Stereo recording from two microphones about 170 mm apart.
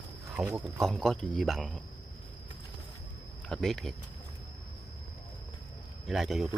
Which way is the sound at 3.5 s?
5° left (ahead or behind).